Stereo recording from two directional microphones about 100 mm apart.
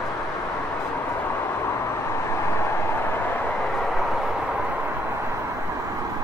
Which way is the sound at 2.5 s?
25° left (ahead or behind).